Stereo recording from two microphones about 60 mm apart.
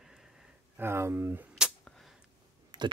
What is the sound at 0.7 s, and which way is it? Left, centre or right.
Speech, right.